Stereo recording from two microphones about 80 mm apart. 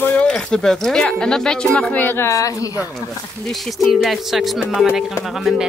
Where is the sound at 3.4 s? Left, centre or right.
Centre.